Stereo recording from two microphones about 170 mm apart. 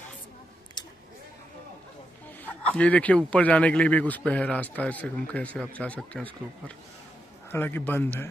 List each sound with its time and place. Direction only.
0.8 s a sound: 25° left (ahead or behind)
2.4 s speech: 5° left (ahead or behind)
7.5 s speech: 10° left (ahead or behind)